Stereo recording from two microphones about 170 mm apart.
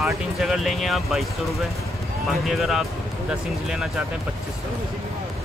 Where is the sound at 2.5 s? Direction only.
Centre (ahead or behind).